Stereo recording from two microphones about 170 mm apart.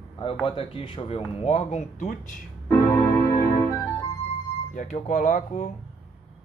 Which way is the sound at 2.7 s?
15° left (ahead or behind).